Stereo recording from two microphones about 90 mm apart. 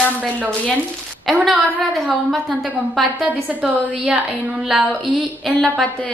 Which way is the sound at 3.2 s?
15° right (ahead or behind).